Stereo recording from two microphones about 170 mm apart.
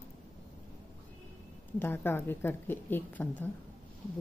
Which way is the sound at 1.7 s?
15° left (ahead or behind).